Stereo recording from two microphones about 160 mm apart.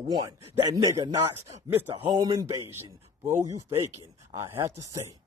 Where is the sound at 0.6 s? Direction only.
20° right (ahead or behind).